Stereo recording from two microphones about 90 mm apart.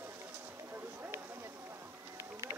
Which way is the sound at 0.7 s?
25° right (ahead or behind).